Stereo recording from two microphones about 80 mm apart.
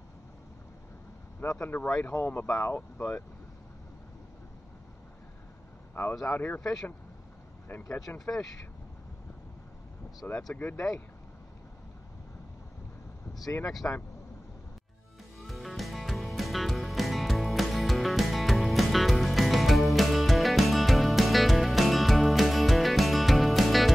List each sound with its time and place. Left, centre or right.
1.4 s speech: left
1.8 s speech: centre
2.1 s speech: left
6.2 s speech: left
7.6 s speech: left
10.5 s speech: left
13.8 s speech: left
15.3 s music: centre